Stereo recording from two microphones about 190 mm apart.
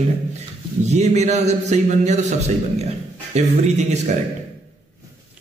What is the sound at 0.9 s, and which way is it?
A man's voice, 35° right (ahead or behind).